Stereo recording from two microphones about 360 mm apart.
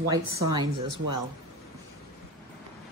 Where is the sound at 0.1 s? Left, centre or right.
Centre.